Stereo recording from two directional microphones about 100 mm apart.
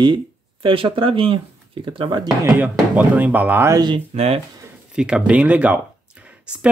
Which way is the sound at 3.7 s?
45° right (ahead or behind).